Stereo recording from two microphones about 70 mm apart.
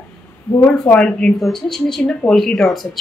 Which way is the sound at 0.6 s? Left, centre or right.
Centre.